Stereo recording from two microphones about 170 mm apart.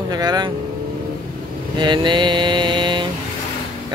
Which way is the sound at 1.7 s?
25° right (ahead or behind).